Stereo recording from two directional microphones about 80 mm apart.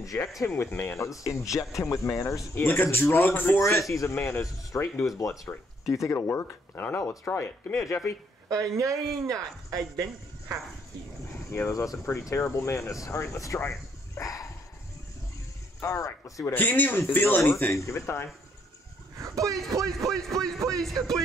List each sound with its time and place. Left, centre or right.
0.5 s speech: left
0.9 s speech: left
6.1 s speech: left
8.5 s speech: right
11.5 s speech: left
15.8 s speech: left
16.5 s speech: left
17.7 s speech: left
19.1 s a sound: right
20.1 s music: centre